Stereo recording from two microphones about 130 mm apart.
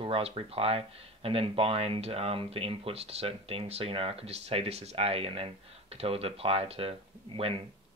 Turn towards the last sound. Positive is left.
turn(degrees=-40)  # may be behind; listen again after turning